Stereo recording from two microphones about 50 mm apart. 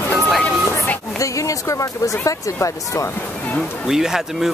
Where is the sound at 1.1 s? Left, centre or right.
Left.